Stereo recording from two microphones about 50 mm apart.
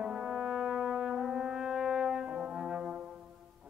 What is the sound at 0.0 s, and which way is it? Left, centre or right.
Brass instrument, centre.